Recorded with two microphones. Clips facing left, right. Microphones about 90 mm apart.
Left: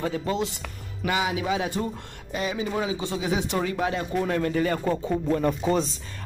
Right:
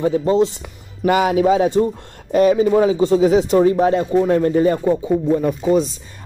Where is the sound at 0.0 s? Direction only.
30° right (ahead or behind).